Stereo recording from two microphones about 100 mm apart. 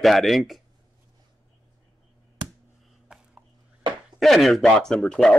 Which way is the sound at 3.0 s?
15° right (ahead or behind).